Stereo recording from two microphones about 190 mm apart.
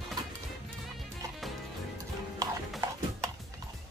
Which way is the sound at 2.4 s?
15° right (ahead or behind).